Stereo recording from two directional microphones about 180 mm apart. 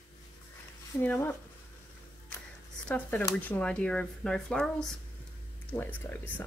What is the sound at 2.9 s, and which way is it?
Speech, 10° left (ahead or behind).